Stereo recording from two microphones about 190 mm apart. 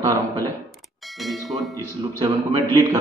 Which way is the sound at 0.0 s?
20° right (ahead or behind).